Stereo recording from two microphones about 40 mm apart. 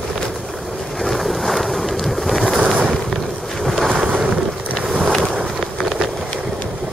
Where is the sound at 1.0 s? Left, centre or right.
Centre.